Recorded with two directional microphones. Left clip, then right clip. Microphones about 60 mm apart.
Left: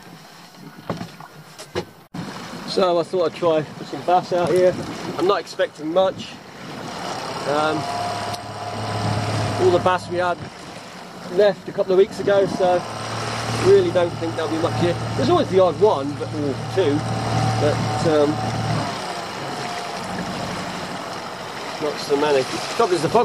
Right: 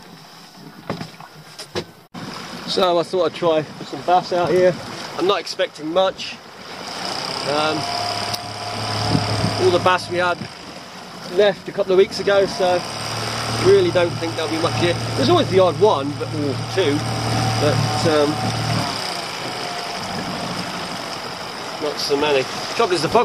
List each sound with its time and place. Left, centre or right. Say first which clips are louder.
2.7 s speech: right 1 dB; centre
4.5 s speech: right 1 dB; right
7.1 s vehicle: right 1 dB; right
11.3 s speech: right 1 dB; right
20.4 s vehicle: right 2 dB; right
21.8 s speech: right 1 dB; right
22.4 s speech: even; left
22.8 s speech: right 1 dB; right